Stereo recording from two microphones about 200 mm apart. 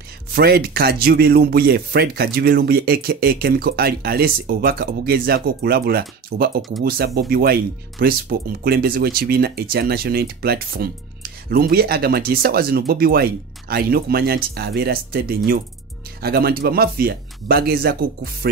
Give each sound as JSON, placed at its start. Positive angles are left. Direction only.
{"t": 0.3, "sound": "speech", "side_deg": -50}